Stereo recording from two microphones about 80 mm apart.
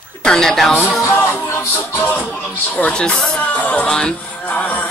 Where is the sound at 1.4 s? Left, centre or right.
Left.